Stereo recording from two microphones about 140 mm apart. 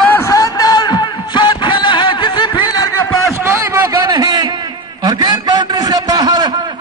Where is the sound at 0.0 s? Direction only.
15° left (ahead or behind).